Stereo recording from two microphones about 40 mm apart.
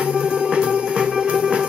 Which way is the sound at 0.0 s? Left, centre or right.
Right.